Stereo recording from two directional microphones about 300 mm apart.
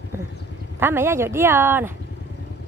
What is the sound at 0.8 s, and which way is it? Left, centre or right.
Speech, centre.